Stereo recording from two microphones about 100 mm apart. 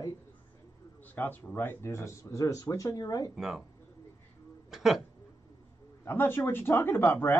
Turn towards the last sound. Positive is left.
turn(degrees=20)  # may be behind; listen again after turning